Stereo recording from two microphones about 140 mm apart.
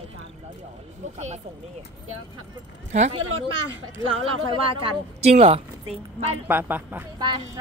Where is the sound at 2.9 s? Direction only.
55° right (ahead or behind).